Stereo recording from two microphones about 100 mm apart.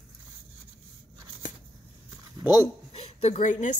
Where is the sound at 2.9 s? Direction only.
90° left.